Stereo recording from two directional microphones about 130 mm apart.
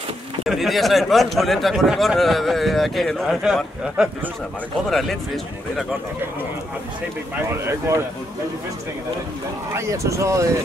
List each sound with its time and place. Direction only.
0.5 s speech: centre (ahead or behind)
7.3 s speech: 20° right (ahead or behind)
9.7 s speech: 20° right (ahead or behind)